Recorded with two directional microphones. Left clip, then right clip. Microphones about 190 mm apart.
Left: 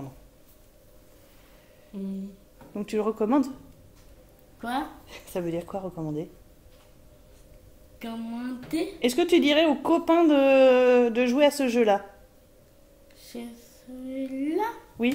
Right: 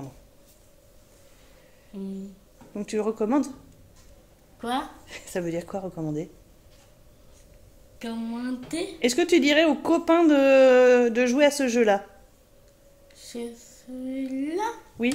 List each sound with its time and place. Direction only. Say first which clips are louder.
1.9 s a sound: even; centre (ahead or behind)
2.7 s speech: even; 5° left (ahead or behind)
4.6 s speech: right 2 dB; 20° right (ahead or behind)
5.0 s speech: right 1 dB; 10° right (ahead or behind)
8.0 s speech: right 2 dB; 15° right (ahead or behind)
13.2 s a sound: right 5 dB; 10° right (ahead or behind)
14.0 s speech: even; 10° right (ahead or behind)